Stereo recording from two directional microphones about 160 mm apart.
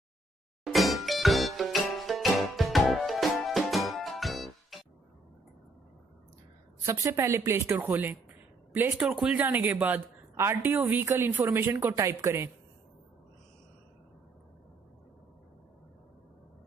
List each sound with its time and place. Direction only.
0.7 s music: centre (ahead or behind)
6.9 s a woman's voice: 20° right (ahead or behind)